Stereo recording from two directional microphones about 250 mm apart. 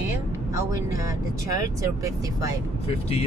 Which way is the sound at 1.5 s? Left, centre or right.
Centre.